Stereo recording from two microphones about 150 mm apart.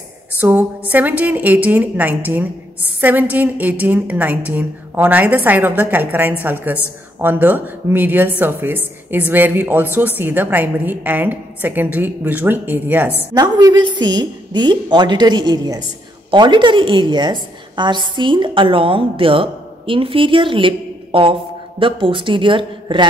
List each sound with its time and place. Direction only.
0.4 s a woman's voice: 10° right (ahead or behind)
13.3 s a woman's voice: 25° right (ahead or behind)